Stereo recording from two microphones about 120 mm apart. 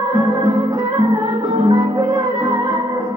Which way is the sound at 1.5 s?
30° right (ahead or behind).